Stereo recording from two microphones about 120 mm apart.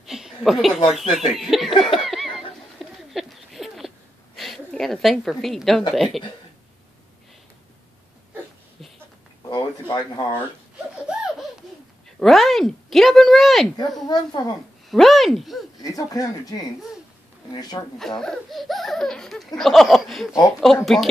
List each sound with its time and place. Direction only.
0.0 s a sound: 5° right (ahead or behind)
1.1 s speech: centre (ahead or behind)
1.9 s laughter: centre (ahead or behind)
3.1 s a sound: centre (ahead or behind)
4.4 s a woman's voice: centre (ahead or behind)
9.5 s a sound: 35° left (ahead or behind)
12.2 s speech: centre (ahead or behind)
14.0 s speech: 35° left (ahead or behind)
14.9 s speech: centre (ahead or behind)
15.8 s speech: 30° left (ahead or behind)
17.9 s speech: 5° left (ahead or behind)